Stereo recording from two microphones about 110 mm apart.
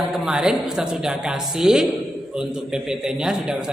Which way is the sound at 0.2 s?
5° right (ahead or behind).